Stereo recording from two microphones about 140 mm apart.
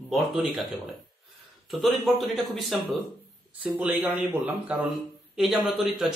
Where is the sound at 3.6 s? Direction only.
10° right (ahead or behind).